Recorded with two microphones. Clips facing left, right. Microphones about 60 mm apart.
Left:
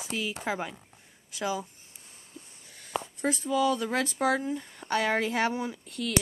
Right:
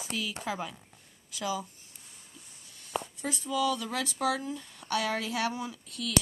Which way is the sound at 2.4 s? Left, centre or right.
Left.